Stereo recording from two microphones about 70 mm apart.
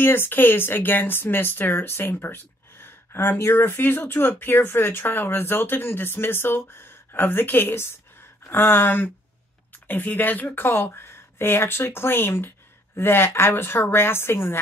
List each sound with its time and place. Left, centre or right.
0.0 s speech: left